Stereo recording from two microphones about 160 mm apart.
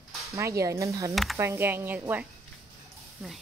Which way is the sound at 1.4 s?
15° right (ahead or behind).